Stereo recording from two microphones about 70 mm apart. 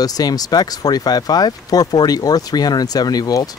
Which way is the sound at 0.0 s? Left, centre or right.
Left.